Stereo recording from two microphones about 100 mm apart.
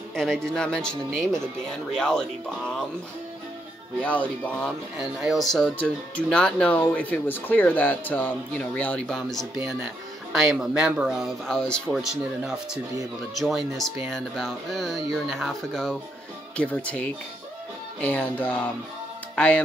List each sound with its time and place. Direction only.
0.1 s speech: 5° left (ahead or behind)
4.0 s speech: 15° left (ahead or behind)
4.9 s speech: 5° right (ahead or behind)
11.4 s speech: 5° left (ahead or behind)
12.0 s speech: 5° right (ahead or behind); by 18.6 s 15° left (ahead or behind)
19.3 s music: 15° left (ahead or behind)